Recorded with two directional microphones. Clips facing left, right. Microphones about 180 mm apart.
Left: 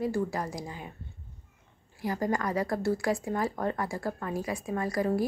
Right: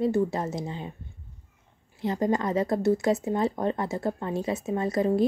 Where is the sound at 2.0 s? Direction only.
20° right (ahead or behind).